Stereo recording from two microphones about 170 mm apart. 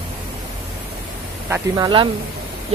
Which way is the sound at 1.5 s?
25° right (ahead or behind).